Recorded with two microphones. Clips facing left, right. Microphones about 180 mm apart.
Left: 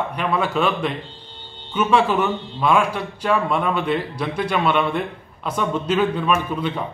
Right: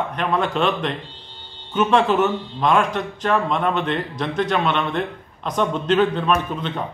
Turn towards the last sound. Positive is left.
turn(degrees=10)  # may be behind; listen again after turning